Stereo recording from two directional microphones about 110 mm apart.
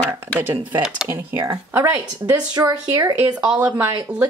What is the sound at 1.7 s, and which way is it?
Speech, 20° right (ahead or behind).